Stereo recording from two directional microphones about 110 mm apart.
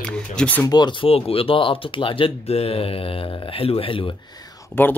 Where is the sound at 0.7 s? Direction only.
40° left (ahead or behind).